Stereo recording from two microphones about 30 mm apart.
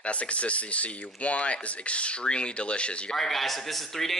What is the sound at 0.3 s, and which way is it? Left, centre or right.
Speech, left.